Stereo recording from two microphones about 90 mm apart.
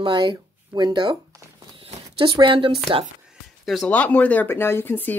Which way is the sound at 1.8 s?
85° right.